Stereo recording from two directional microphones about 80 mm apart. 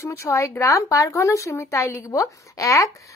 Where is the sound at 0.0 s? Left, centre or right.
Left.